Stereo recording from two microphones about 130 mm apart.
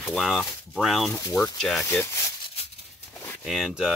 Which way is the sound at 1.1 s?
25° left (ahead or behind).